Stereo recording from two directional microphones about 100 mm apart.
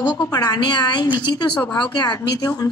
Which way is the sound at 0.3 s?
40° left (ahead or behind).